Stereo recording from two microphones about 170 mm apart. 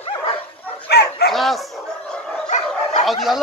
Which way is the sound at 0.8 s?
75° left (ahead or behind).